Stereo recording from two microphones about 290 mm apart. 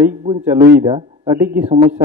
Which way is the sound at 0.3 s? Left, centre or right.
Centre.